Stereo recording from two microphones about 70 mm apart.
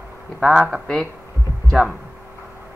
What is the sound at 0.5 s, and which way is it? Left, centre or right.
Speech, centre.